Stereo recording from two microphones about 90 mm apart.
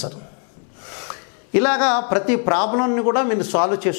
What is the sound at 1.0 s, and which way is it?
Speech, 15° left (ahead or behind).